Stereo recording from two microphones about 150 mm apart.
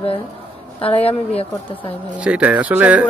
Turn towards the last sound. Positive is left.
turn(degrees=-10)  # may be behind; listen again after turning